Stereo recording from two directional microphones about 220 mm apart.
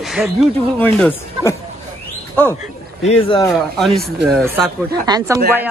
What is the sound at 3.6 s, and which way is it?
A man's voice, centre (ahead or behind).